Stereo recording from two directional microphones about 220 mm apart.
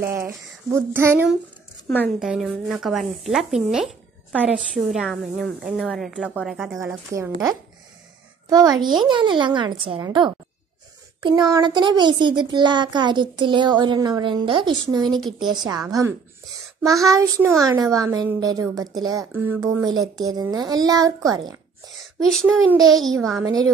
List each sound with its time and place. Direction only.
0.0 s speech: 10° right (ahead or behind)
1.9 s a woman's voice: centre (ahead or behind)
6.8 s a child's voice: 15° right (ahead or behind)
22.0 s a woman's voice: centre (ahead or behind)